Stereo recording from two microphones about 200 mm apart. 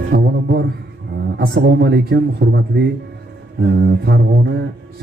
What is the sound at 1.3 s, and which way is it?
A man's voice, 55° right (ahead or behind).